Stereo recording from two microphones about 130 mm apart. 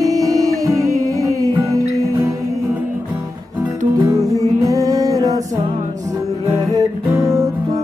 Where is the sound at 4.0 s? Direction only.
25° right (ahead or behind).